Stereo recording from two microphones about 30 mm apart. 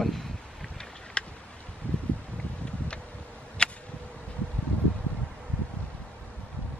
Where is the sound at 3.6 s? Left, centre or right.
Left.